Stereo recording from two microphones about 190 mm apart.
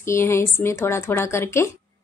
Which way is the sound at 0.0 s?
15° left (ahead or behind).